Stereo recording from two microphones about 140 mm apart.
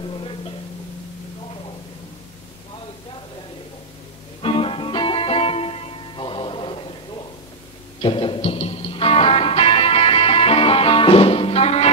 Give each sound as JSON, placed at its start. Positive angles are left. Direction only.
{"t": 0.1, "sound": "a sound", "side_deg": 40}
{"t": 4.4, "sound": "music", "side_deg": 40}
{"t": 8.0, "sound": "music", "side_deg": 40}